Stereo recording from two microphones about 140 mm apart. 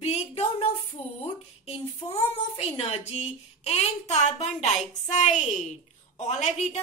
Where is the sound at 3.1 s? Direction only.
50° left (ahead or behind).